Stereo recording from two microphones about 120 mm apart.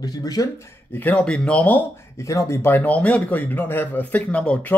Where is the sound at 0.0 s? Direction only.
30° left (ahead or behind).